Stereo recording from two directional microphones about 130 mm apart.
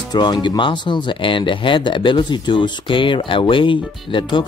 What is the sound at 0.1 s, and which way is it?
Speech, 35° left (ahead or behind).